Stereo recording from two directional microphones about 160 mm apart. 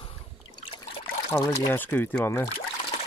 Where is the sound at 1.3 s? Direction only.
10° left (ahead or behind).